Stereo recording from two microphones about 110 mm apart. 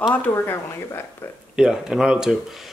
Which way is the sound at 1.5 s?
5° right (ahead or behind).